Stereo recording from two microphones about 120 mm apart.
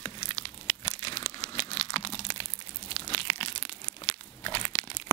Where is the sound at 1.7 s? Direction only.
55° left (ahead or behind).